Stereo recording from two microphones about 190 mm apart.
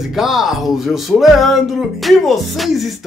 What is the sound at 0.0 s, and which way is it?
Speech, centre (ahead or behind).